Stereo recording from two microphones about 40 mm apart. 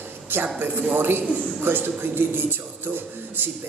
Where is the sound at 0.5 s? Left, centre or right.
Right.